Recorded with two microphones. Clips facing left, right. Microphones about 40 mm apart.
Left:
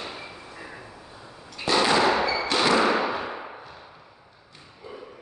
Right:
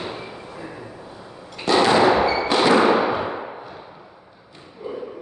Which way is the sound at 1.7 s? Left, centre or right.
Centre.